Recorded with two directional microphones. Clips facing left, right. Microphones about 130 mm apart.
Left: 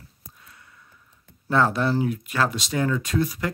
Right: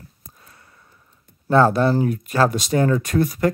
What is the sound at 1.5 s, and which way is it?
Speech, 40° right (ahead or behind).